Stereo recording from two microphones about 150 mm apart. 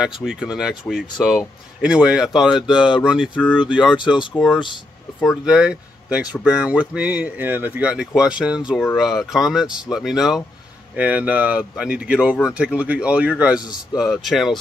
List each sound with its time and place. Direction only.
0.0 s speech: 5° right (ahead or behind)
4.0 s speech: 30° left (ahead or behind)
5.2 s speech: centre (ahead or behind)